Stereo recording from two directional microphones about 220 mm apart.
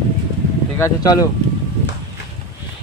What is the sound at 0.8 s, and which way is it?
Speech, 15° left (ahead or behind).